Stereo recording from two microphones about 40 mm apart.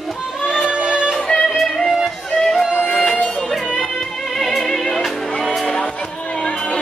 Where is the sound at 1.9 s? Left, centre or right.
Centre.